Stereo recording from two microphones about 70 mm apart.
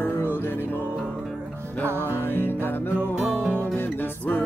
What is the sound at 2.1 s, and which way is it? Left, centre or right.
Music, left.